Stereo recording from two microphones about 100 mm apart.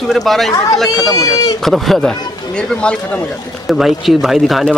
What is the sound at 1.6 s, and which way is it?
Speech, centre (ahead or behind).